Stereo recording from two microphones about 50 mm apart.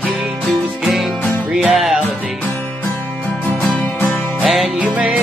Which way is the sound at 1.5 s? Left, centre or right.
Centre.